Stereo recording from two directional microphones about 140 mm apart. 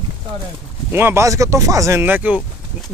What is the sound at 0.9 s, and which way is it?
Speech, 15° right (ahead or behind).